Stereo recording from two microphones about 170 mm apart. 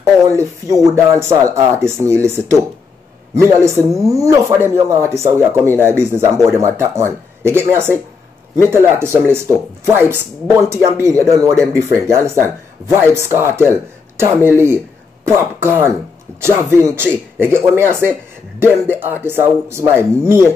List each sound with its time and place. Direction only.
0.3 s speech: 20° right (ahead or behind)
13.2 s speech: 15° right (ahead or behind)